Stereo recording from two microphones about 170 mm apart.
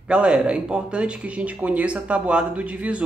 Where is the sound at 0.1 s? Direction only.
5° right (ahead or behind).